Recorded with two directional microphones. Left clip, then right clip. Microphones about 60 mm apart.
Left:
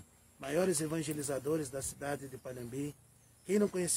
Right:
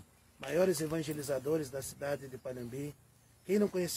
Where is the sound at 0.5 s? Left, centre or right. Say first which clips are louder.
Right 2 dB; left.